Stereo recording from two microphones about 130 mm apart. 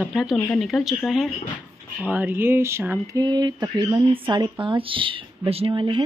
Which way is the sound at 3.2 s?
35° right (ahead or behind).